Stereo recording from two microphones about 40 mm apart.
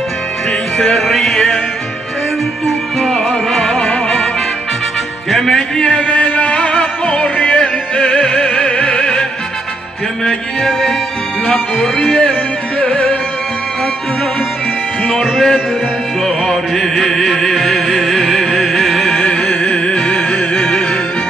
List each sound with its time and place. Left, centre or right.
0.7 s music: centre
3.0 s music: centre
5.3 s music: centre
5.9 s music: left
8.1 s music: left
10.6 s music: centre
12.0 s music: left
15.0 s music: centre
16.4 s music: centre
20.1 s music: left